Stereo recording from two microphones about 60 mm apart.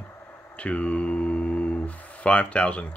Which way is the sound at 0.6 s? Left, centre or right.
Left.